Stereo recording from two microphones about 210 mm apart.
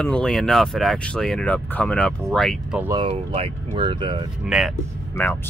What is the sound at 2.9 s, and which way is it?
Speech, 25° right (ahead or behind).